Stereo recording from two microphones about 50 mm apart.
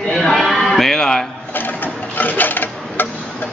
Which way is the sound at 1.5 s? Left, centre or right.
Left.